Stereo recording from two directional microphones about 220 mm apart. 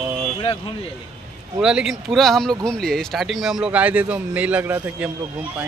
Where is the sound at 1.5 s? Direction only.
5° right (ahead or behind).